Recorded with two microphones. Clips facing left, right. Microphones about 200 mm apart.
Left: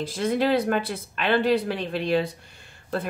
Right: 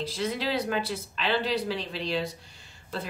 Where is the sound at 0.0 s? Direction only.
50° left (ahead or behind).